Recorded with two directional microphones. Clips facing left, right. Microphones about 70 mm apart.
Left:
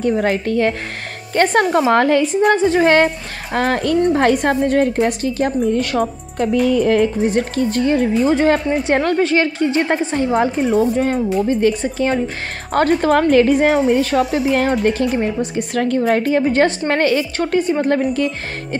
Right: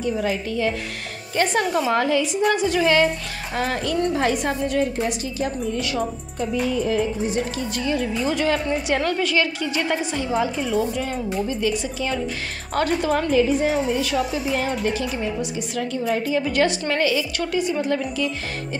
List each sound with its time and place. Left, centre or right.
0.0 s a woman's voice: left
2.3 s a woman's voice: left
13.3 s a woman's voice: left